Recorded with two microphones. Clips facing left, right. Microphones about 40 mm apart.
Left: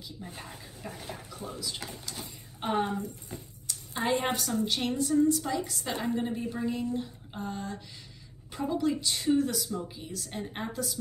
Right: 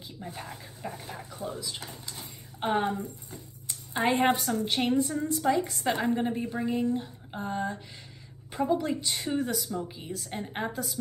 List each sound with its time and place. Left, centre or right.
0.2 s a woman's voice: right
0.8 s a woman's voice: centre
2.6 s a woman's voice: right
3.6 s a sound: right
4.3 s a woman's voice: centre
5.1 s a woman's voice: right
6.1 s a woman's voice: centre